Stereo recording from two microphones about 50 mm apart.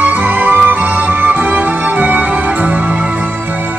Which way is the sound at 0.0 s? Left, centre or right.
Right.